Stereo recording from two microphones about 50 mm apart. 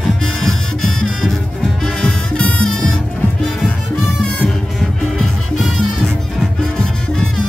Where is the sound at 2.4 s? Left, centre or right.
Left.